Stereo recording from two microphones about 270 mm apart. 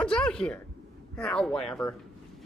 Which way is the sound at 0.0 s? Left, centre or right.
Centre.